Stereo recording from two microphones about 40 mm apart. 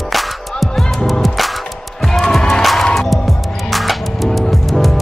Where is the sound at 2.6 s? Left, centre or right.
Centre.